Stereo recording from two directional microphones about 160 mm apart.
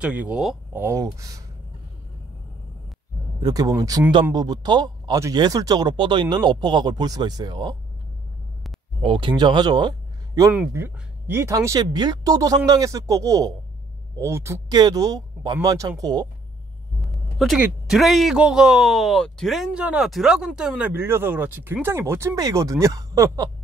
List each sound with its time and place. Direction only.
0.0 s speech: 10° right (ahead or behind)
0.7 s speech: 15° right (ahead or behind)
3.4 s speech: 25° right (ahead or behind)
9.0 s speech: 35° right (ahead or behind)
17.0 s a sound: centre (ahead or behind)
17.6 s speech: centre (ahead or behind); by 23.5 s 20° right (ahead or behind)